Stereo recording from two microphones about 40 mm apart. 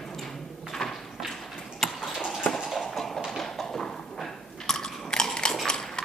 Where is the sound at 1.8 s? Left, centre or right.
Centre.